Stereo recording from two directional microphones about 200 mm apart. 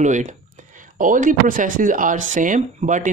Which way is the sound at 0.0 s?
35° right (ahead or behind).